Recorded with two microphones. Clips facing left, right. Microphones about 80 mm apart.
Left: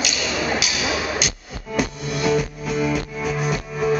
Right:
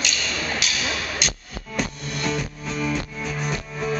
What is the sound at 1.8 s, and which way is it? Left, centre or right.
Music, centre.